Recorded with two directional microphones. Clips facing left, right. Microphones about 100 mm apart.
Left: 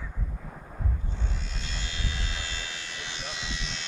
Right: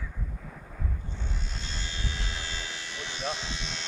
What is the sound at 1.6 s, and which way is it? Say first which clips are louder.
Vehicle: even; 35° right (ahead or behind).